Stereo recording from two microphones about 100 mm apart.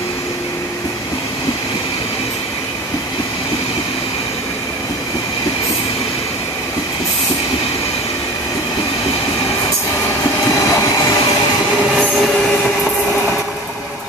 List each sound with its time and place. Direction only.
10.5 s train: 30° left (ahead or behind)
11.9 s train: 5° left (ahead or behind)